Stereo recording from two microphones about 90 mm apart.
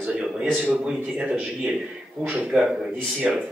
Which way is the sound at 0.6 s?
10° right (ahead or behind).